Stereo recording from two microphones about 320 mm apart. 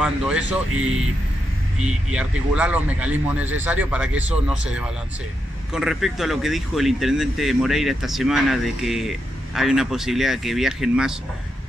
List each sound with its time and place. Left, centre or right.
0.0 s speech: centre